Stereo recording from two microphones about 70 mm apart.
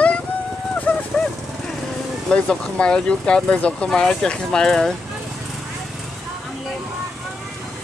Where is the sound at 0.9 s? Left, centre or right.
Left.